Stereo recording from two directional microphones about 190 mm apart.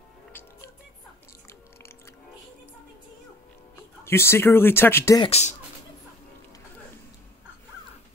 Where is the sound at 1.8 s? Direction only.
15° left (ahead or behind).